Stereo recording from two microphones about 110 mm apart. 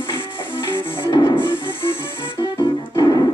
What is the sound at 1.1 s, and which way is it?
Music, 40° left (ahead or behind).